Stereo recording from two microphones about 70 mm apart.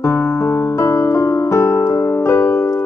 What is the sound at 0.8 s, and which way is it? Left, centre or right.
Music, left.